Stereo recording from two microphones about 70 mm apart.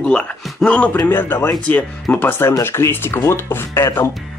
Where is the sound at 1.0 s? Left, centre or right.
Left.